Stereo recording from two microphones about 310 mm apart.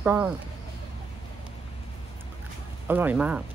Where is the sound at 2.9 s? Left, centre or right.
Centre.